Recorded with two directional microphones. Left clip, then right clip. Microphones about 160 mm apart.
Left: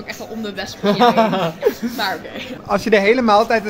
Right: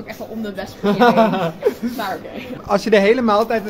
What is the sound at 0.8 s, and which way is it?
Speech, 30° left (ahead or behind).